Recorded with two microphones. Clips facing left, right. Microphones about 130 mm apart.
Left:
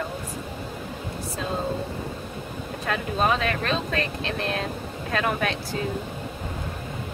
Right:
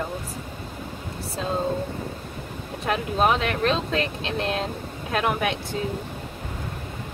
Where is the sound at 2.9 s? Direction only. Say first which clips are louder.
Right 2 dB; 20° right (ahead or behind).